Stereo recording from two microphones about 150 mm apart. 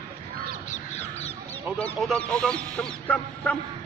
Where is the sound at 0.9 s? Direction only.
45° left (ahead or behind).